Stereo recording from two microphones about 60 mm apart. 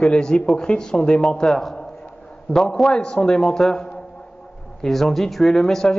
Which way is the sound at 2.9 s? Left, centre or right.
Centre.